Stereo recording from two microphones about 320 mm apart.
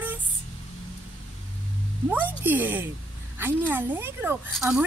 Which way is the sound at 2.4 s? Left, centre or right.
Centre.